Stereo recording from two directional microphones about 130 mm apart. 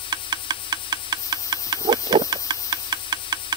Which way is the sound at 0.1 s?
30° right (ahead or behind).